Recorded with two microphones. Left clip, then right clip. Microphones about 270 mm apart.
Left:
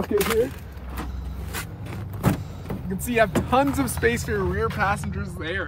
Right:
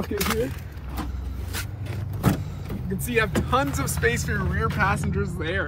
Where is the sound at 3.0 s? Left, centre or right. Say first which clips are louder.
Left 3 dB; left.